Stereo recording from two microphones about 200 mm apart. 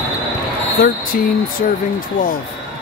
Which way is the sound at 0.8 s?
50° left (ahead or behind).